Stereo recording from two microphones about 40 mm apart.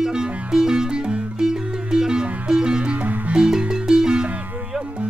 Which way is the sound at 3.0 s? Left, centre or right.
Right.